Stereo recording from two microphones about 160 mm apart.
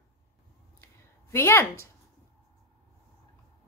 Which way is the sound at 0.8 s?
15° left (ahead or behind).